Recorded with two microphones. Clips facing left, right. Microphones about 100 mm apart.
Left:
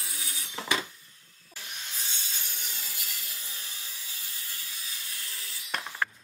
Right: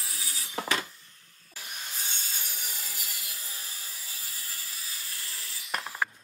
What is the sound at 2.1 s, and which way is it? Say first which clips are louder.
Sawing: right 1 dB; 45° right (ahead or behind).